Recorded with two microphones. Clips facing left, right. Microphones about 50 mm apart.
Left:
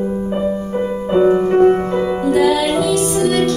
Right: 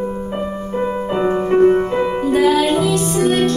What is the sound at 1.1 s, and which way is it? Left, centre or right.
Music, centre.